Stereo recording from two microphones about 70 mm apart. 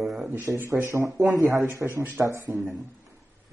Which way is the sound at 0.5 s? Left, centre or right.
Right.